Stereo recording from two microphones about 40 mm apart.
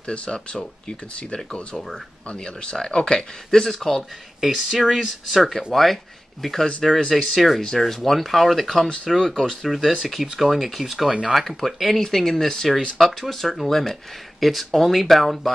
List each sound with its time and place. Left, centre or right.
0.0 s speech: left
3.5 s speech: centre
4.4 s speech: centre
6.8 s speech: centre
11.1 s speech: right
11.3 s speech: centre